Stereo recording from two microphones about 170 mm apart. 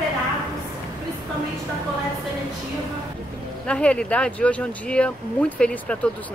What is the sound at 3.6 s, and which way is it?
Speech, 5° left (ahead or behind).